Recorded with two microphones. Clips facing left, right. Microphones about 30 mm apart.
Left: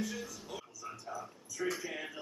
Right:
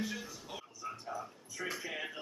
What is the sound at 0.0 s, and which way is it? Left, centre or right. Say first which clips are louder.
Speech: left 1 dB; centre.